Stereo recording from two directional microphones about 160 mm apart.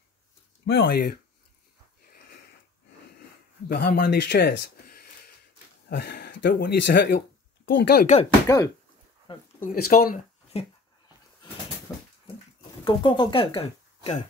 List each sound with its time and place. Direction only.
0.7 s speech: 85° left
3.6 s speech: 85° left
5.9 s speech: 90° left
8.5 s speech: 20° left (ahead or behind)
9.6 s speech: 65° left (ahead or behind)
10.5 s speech: 40° left (ahead or behind)
11.9 s dog: 20° left (ahead or behind)
12.8 s speech: 30° left (ahead or behind)